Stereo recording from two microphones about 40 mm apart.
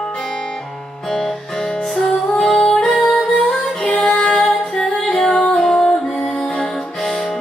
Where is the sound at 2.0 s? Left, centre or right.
Centre.